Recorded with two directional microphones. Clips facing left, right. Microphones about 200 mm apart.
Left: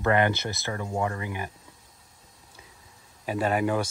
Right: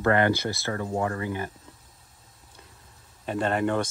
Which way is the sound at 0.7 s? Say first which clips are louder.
Right 1 dB; 45° right (ahead or behind).